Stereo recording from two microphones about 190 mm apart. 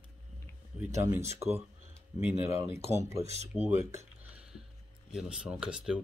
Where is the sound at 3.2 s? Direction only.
35° right (ahead or behind).